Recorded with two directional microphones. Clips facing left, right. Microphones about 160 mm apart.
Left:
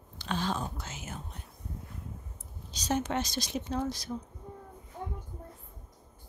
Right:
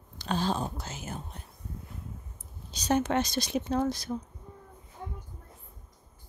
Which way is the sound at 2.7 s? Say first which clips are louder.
Right 4 dB; 60° right (ahead or behind).